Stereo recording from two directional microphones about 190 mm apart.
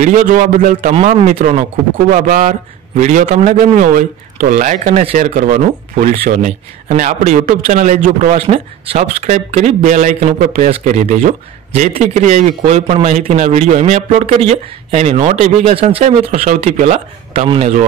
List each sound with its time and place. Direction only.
0.0 s a man's voice: 45° right (ahead or behind)